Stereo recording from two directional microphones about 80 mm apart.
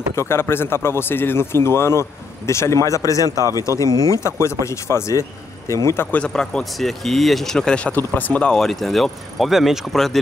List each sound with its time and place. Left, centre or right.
0.1 s speech: left
6.1 s speech: centre
7.9 s speech: left
8.5 s speech: centre